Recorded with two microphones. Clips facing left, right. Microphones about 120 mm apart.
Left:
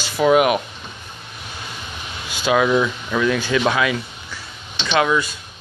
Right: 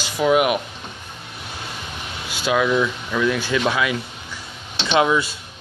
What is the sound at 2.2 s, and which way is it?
Speech, 5° right (ahead or behind).